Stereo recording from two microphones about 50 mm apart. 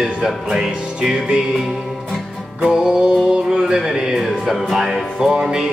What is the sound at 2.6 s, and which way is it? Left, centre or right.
Music, centre.